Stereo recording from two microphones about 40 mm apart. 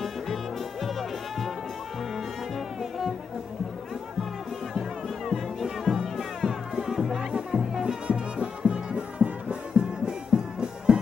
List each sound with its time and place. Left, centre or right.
0.0 s music: centre
2.1 s brass instrument: centre
4.7 s music: centre
7.2 s music: centre